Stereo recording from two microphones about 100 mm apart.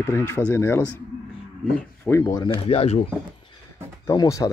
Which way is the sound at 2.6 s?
85° left.